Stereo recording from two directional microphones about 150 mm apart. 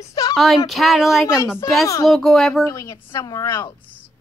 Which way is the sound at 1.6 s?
25° left (ahead or behind).